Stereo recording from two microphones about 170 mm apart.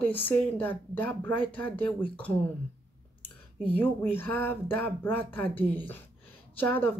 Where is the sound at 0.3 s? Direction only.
10° left (ahead or behind).